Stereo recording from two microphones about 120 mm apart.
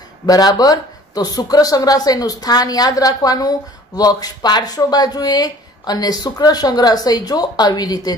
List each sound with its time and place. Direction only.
0.3 s speech: 30° left (ahead or behind)